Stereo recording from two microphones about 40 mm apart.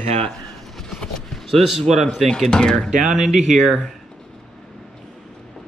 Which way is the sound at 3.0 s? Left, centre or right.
Centre.